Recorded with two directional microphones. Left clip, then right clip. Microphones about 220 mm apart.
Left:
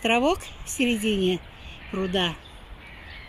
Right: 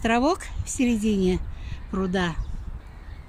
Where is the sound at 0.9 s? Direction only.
55° right (ahead or behind).